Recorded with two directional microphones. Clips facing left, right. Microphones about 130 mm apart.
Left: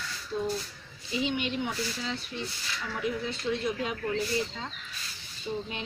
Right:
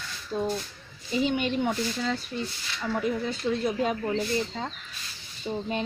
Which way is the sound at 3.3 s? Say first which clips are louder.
Right 3 dB; 40° right (ahead or behind).